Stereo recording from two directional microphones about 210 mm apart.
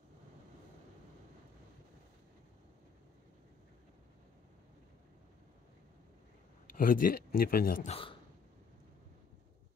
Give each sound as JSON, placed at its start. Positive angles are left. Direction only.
{"t": 6.7, "sound": "speech", "side_deg": 40}
{"t": 7.9, "sound": "speech", "side_deg": 25}